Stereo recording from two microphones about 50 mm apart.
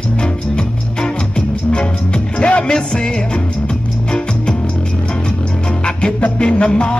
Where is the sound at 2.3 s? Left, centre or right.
Left.